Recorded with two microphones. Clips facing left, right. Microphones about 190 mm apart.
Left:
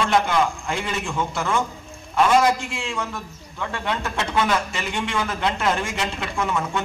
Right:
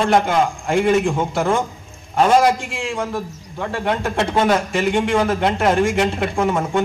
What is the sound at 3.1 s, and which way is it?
Speech, 50° right (ahead or behind).